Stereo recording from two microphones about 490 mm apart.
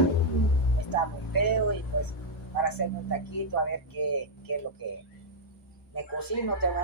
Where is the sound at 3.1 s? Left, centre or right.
Left.